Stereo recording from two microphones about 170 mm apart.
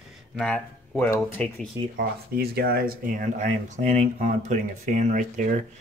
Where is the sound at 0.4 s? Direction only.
10° left (ahead or behind).